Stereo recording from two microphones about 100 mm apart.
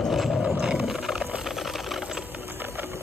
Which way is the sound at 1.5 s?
Centre (ahead or behind).